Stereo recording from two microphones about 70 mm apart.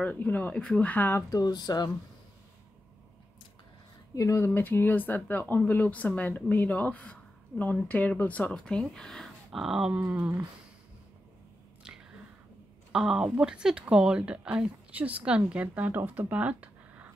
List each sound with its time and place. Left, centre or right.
0.0 s speech: left
1.3 s speech: left
4.1 s speech: left
4.6 s speech: left; by 9.3 s centre
9.5 s a sound: centre
9.9 s speech: right
12.9 s speech: centre
16.2 s a sound: right